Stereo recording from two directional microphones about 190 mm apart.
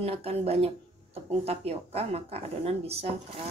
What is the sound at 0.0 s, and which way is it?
Speech, 30° right (ahead or behind).